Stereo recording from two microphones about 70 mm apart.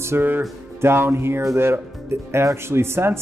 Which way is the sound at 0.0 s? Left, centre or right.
Right.